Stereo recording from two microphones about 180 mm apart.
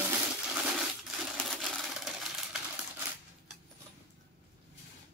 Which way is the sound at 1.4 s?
Centre (ahead or behind).